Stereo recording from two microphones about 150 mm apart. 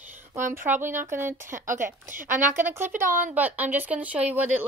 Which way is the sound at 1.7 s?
60° right (ahead or behind).